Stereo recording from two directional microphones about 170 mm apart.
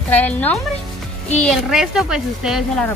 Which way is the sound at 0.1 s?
10° left (ahead or behind).